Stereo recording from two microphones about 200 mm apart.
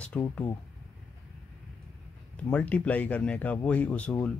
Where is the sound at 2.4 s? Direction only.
5° left (ahead or behind).